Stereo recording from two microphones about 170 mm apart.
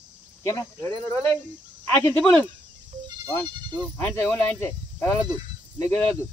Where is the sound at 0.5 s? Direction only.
15° left (ahead or behind).